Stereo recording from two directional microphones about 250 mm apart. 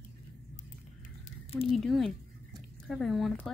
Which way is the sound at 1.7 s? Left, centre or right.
Centre.